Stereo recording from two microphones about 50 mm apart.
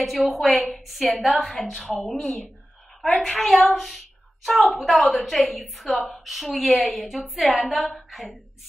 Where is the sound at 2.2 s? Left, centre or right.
Left.